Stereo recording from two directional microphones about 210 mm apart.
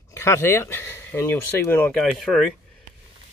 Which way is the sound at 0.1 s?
15° left (ahead or behind).